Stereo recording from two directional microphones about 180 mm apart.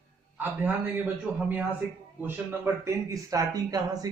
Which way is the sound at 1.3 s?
10° right (ahead or behind).